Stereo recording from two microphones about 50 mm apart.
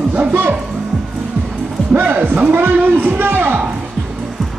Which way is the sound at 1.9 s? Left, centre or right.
Right.